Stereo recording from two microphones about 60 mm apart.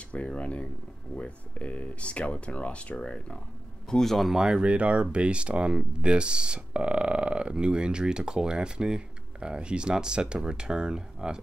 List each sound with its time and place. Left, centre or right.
0.1 s speech: left
3.9 s speech: centre
4.4 s speech: centre